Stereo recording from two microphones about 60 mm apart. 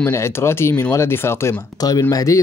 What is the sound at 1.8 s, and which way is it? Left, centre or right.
Speech, left.